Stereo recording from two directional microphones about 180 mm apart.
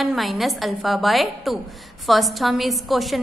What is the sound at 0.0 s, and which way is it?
A woman's voice, centre (ahead or behind).